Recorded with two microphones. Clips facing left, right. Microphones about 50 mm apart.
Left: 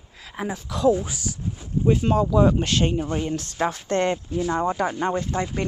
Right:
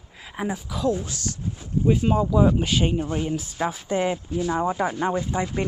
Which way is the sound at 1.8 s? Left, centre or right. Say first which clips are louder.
Left 1 dB; centre.